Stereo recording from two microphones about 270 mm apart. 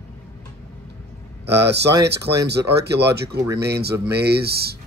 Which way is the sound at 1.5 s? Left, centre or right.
Right.